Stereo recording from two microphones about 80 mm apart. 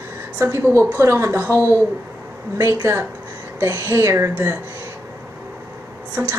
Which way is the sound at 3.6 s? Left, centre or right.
Right.